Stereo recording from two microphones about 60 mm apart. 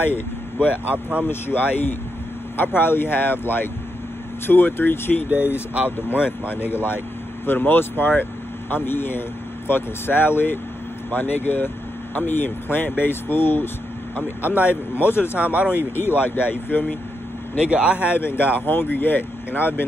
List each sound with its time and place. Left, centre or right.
0.8 s speech: right
1.2 s speech: left
5.3 s speech: right
5.9 s speech: left
15.0 s speech: left
15.3 s speech: right
16.0 s speech: left
17.6 s speech: right
18.1 s speech: left